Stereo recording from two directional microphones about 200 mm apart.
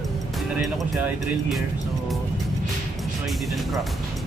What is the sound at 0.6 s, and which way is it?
Speech, centre (ahead or behind).